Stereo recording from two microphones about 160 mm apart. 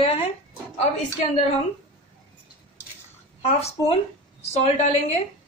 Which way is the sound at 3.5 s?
40° left (ahead or behind).